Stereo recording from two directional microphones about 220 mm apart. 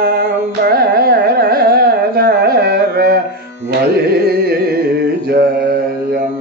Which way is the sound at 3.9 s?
45° right (ahead or behind).